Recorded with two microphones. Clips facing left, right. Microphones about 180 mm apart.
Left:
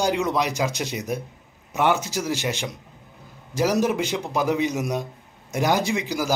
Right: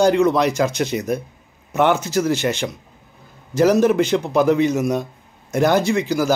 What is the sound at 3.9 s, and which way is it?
Speech, 10° left (ahead or behind).